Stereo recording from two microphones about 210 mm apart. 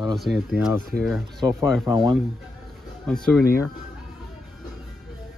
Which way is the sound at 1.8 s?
20° right (ahead or behind).